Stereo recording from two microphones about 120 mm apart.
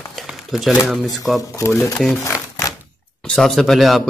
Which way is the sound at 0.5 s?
Centre (ahead or behind).